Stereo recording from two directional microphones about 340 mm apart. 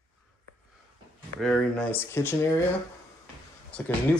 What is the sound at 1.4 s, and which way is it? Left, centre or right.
Speech, centre.